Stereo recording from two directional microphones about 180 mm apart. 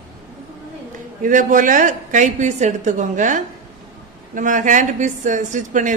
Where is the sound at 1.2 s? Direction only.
45° right (ahead or behind).